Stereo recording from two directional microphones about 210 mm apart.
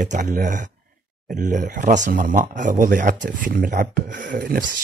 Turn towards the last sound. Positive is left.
turn(degrees=-45)  # may be behind; listen again after turning